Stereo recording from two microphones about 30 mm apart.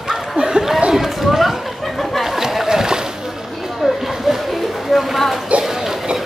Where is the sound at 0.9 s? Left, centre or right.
Centre.